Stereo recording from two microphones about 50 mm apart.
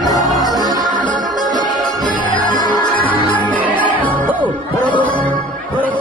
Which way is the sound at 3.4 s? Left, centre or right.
Left.